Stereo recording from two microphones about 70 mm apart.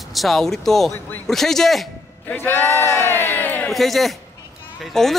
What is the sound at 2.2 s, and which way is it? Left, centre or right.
Speech, left.